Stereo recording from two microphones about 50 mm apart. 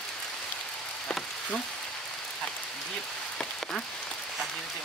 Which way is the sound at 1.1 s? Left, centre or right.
Centre.